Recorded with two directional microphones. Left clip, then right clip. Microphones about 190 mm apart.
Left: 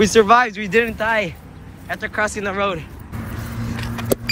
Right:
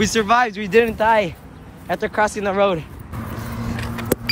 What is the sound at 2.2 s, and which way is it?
Speech, 20° right (ahead or behind).